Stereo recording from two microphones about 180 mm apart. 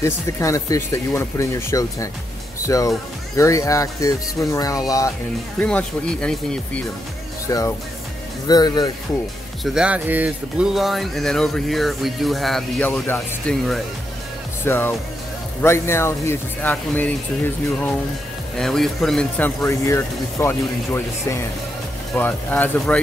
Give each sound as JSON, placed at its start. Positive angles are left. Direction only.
{"t": 0.0, "sound": "speech", "side_deg": 15}
{"t": 5.6, "sound": "speech", "side_deg": 5}
{"t": 9.6, "sound": "speech", "side_deg": 0}
{"t": 14.6, "sound": "speech", "side_deg": 10}
{"t": 18.6, "sound": "speech", "side_deg": 0}